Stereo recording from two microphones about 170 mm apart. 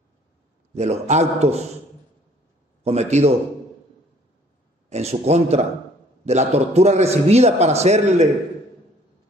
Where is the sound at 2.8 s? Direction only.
40° right (ahead or behind).